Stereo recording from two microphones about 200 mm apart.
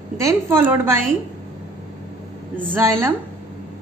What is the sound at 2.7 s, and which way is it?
Speech, 15° right (ahead or behind).